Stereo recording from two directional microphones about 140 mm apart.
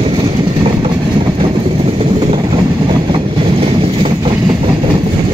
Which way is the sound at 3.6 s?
40° right (ahead or behind).